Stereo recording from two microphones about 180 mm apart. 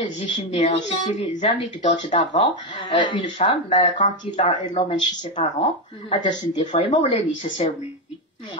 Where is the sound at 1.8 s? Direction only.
25° left (ahead or behind); by 4.5 s 40° left (ahead or behind).